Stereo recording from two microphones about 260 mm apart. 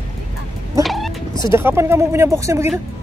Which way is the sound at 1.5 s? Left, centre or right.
Centre.